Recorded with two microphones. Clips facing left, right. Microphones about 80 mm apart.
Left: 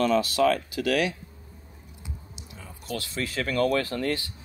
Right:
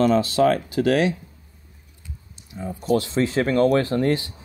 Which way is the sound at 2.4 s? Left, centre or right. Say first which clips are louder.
Right 16 dB; right.